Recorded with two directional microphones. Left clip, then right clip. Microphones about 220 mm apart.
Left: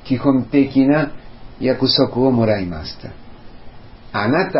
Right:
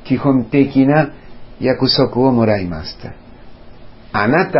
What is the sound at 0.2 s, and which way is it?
Speech, 30° right (ahead or behind).